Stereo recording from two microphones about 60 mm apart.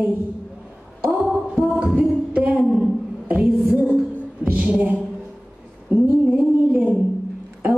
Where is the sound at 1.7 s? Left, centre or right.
Right.